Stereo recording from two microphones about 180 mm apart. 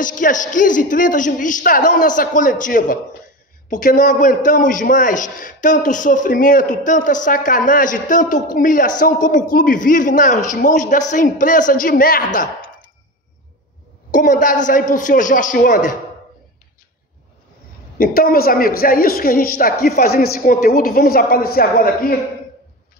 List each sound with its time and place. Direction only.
0.0 s a man's voice: 45° left (ahead or behind)
14.1 s a man's voice: 45° left (ahead or behind)
17.9 s a man's voice: 55° left (ahead or behind)